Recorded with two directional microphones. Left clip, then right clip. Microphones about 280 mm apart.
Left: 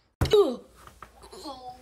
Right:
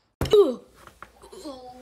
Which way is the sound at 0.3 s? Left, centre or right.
Centre.